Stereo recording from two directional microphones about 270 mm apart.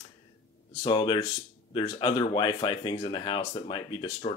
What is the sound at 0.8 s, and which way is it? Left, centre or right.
Speech, centre.